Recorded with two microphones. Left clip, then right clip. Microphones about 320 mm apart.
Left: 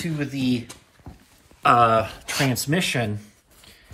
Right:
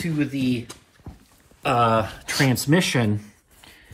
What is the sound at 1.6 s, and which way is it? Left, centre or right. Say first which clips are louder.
Speech: left 3 dB; centre.